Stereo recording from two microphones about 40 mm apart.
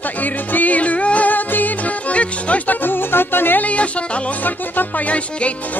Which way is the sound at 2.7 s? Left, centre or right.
Left.